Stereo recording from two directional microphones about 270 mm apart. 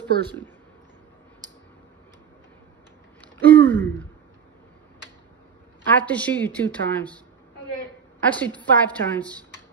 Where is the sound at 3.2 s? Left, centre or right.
Centre.